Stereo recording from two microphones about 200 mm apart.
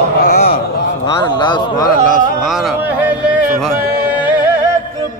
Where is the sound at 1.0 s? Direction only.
20° left (ahead or behind).